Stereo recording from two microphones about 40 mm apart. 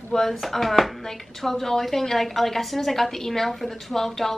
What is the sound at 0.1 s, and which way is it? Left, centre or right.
A woman's voice, centre.